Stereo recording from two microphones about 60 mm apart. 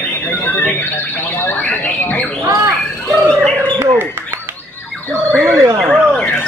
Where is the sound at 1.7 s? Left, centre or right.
Left.